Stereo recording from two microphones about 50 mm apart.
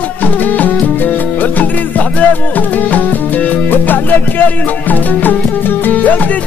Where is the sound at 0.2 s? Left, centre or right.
Left.